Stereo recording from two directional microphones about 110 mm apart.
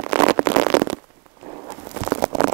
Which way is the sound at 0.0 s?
15° right (ahead or behind).